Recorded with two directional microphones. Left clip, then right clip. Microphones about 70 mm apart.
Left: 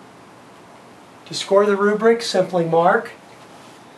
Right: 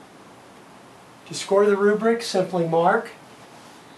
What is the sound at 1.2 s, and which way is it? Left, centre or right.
Speech, left.